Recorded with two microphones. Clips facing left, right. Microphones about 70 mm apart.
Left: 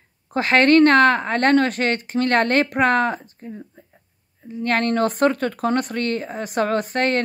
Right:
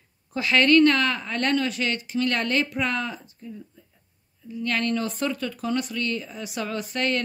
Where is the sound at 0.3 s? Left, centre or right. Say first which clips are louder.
Left 4 dB; left.